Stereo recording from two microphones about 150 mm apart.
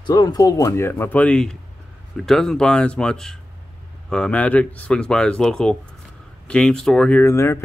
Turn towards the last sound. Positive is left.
turn(degrees=15)  # may be behind; listen again after turning